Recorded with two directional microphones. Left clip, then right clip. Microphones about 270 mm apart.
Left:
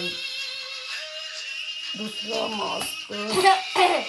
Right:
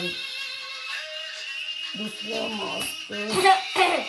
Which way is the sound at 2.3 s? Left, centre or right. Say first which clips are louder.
Left 3 dB; centre.